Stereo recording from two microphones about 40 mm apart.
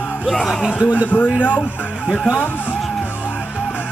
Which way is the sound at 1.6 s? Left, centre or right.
Left.